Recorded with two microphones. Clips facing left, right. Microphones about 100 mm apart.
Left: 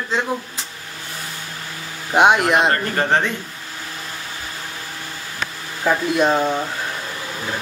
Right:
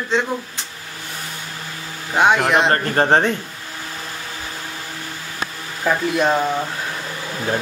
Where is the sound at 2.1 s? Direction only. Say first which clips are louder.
Left 2 dB; 15° left (ahead or behind).